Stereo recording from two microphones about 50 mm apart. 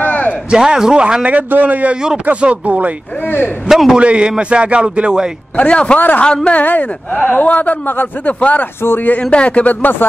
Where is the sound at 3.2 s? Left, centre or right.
Left.